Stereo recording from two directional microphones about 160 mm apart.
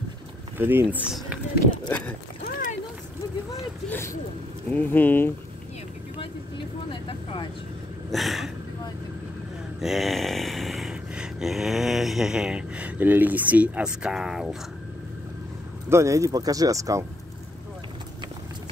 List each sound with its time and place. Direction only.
0.6 s speech: 15° right (ahead or behind)
2.4 s boat: 55° left (ahead or behind)
3.9 s speech: 15° left (ahead or behind)
6.9 s speech: 35° left (ahead or behind)
8.1 s a sound: centre (ahead or behind)
9.8 s a sound: centre (ahead or behind)
15.9 s speech: 20° right (ahead or behind)